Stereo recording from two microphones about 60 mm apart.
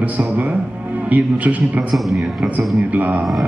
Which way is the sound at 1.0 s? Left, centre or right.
Right.